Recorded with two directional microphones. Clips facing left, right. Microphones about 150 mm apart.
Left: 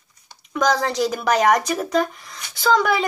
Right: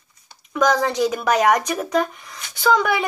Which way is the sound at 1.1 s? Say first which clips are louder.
Left 2 dB; centre (ahead or behind).